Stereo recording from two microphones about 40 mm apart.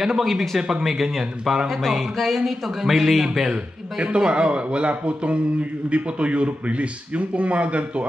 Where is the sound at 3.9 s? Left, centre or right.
Right.